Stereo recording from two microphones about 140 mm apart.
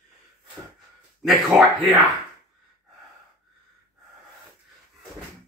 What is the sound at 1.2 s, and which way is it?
Speech, centre (ahead or behind).